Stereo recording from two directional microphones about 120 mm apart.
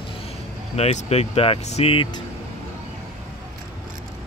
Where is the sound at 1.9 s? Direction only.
45° left (ahead or behind).